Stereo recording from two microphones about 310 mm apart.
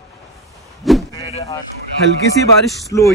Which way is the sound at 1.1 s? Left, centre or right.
Centre.